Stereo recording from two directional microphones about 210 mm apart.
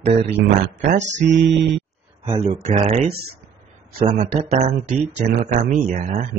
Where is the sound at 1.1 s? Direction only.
60° right (ahead or behind).